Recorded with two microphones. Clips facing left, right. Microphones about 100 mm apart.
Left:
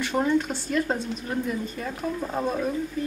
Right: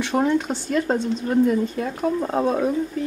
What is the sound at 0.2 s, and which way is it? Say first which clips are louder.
Speech: right 1 dB; 25° right (ahead or behind).